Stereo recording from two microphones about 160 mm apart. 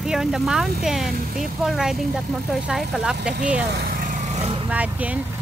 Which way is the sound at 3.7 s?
90° right.